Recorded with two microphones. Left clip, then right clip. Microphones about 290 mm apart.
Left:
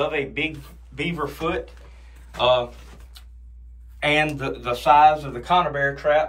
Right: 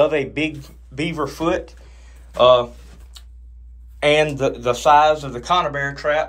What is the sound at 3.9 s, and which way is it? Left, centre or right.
Speech, centre.